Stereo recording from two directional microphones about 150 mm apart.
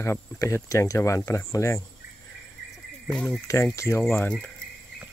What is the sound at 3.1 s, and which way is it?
Speech, 5° left (ahead or behind).